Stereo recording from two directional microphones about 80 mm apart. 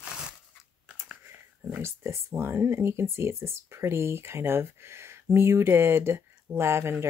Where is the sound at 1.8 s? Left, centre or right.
Right.